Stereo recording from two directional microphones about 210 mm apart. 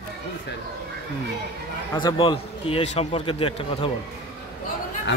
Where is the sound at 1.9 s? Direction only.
20° left (ahead or behind).